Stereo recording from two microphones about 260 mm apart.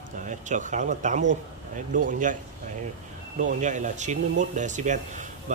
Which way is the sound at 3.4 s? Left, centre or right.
Right.